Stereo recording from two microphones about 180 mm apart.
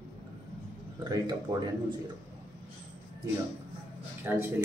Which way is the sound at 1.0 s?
20° right (ahead or behind).